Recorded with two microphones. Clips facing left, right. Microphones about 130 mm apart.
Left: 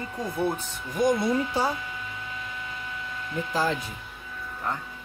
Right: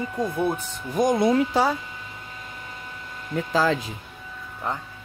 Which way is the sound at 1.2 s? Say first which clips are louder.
Right 5 dB; 90° right.